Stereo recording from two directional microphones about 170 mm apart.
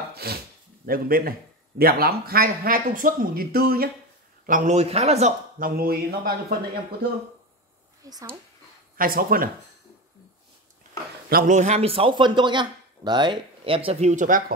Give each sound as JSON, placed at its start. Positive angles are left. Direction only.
{"t": 0.1, "sound": "a sound", "side_deg": -65}
{"t": 0.8, "sound": "speech", "side_deg": -60}
{"t": 4.5, "sound": "speech", "side_deg": -45}
{"t": 5.6, "sound": "speech", "side_deg": -60}
{"t": 8.0, "sound": "speech", "side_deg": -20}
{"t": 8.9, "sound": "speech", "side_deg": -55}
{"t": 11.2, "sound": "speech", "side_deg": -55}